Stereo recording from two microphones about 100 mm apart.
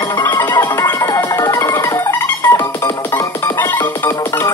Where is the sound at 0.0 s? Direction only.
25° left (ahead or behind).